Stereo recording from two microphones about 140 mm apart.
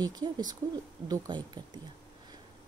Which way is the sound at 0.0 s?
30° right (ahead or behind).